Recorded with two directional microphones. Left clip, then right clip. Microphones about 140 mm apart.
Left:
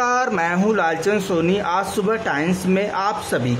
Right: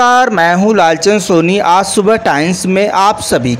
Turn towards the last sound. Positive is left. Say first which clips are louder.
# right 11 dB
turn(degrees=-35)  # may be behind; listen again after turning